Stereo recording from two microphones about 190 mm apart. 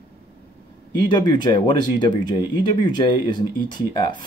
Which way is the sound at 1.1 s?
20° left (ahead or behind).